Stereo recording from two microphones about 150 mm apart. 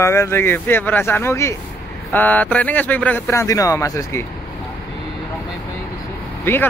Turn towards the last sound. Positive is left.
turn(degrees=15)  # may be behind; listen again after turning